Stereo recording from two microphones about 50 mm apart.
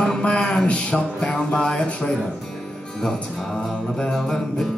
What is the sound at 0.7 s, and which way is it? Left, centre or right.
Music, left.